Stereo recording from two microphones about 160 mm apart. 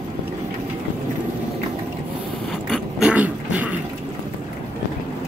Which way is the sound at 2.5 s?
Centre (ahead or behind).